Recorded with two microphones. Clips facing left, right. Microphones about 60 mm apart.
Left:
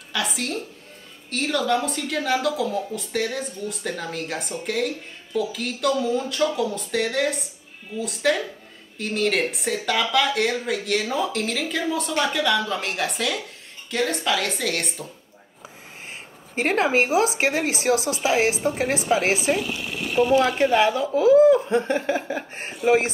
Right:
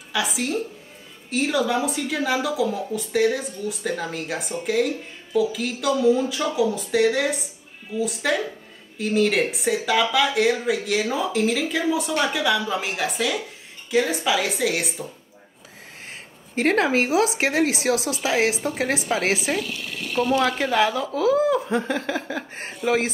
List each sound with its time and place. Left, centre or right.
0.1 s a woman's voice: centre
16.5 s a woman's voice: left
21.6 s speech: centre